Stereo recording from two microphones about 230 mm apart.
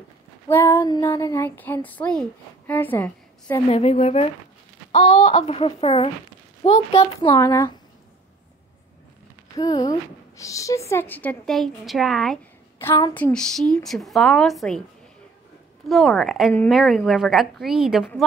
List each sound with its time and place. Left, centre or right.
0.5 s speech: centre
3.7 s speech: left
7.3 s speech: centre
9.6 s a woman's voice: centre
15.9 s a woman's voice: centre